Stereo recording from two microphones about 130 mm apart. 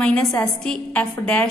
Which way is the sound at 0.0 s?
5° left (ahead or behind).